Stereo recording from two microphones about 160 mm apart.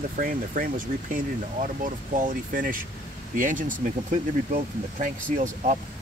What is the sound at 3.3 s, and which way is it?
Speech, 55° right (ahead or behind).